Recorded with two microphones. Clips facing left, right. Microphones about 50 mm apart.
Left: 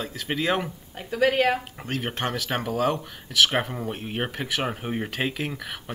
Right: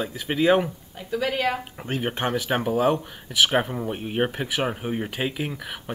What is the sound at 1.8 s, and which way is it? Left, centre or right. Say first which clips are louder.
Speech: right 3 dB; centre.